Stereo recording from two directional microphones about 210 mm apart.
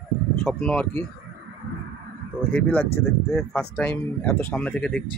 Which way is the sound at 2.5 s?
5° left (ahead or behind).